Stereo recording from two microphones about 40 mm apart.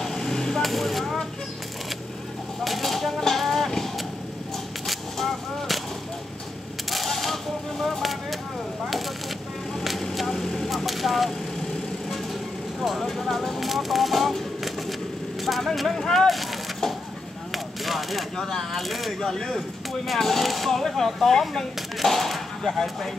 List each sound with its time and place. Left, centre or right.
0.0 s vehicle: centre
0.6 s speech: centre
2.6 s a sound: centre
6.9 s a sound: centre
10.1 s vehicle: centre
12.8 s speech: centre
15.9 s speech: centre
16.3 s a sound: centre
17.5 s chop: centre
18.4 s speech: centre
19.2 s speech: centre